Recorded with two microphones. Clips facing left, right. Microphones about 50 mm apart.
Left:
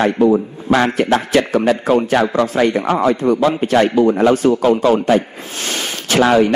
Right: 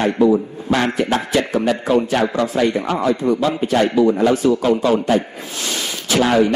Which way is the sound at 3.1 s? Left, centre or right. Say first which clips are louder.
Left 3 dB; left.